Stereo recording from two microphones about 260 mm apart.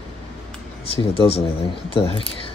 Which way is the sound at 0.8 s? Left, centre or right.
Left.